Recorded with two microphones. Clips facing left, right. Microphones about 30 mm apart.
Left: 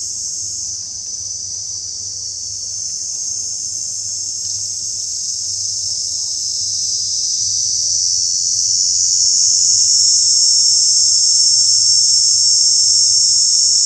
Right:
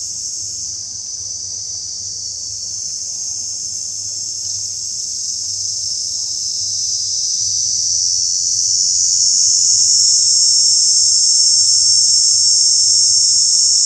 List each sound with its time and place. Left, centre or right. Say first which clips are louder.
7.2 s insect: even; centre